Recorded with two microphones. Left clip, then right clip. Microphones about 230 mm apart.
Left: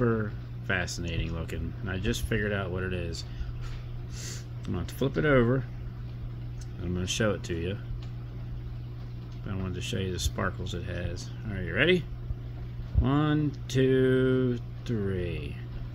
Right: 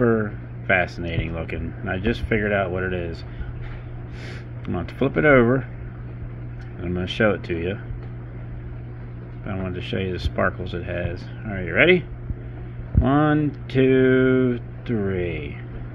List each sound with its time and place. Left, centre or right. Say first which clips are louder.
0.0 s speech: right 8 dB; centre
4.3 s speech: right 8 dB; centre
6.8 s speech: right 8 dB; centre
9.5 s speech: right 7 dB; centre
13.0 s speech: right 8 dB; centre